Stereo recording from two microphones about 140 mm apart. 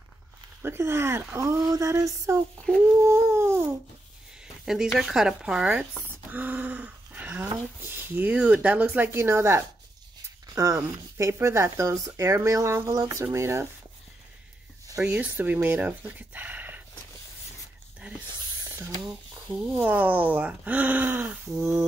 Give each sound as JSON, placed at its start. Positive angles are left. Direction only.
{"t": 0.6, "sound": "speech", "side_deg": -15}
{"t": 3.0, "sound": "a sound", "side_deg": -20}
{"t": 4.6, "sound": "speech", "side_deg": 0}
{"t": 15.0, "sound": "speech", "side_deg": -10}
{"t": 19.0, "sound": "speech", "side_deg": -5}